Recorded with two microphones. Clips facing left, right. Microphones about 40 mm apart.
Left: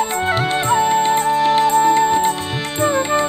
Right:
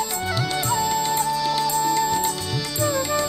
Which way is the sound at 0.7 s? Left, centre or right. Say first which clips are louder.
Left 8 dB; left.